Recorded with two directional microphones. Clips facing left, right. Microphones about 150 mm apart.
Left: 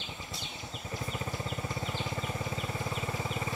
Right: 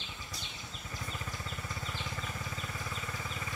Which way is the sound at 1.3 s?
25° left (ahead or behind).